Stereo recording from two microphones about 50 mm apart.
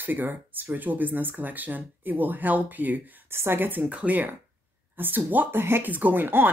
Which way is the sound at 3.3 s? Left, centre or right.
Right.